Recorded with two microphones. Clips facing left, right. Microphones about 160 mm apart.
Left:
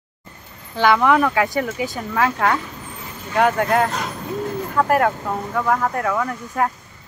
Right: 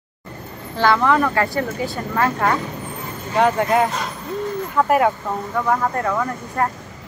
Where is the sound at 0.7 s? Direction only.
15° left (ahead or behind).